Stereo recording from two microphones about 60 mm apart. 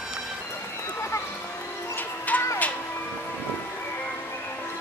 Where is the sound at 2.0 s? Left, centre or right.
Left.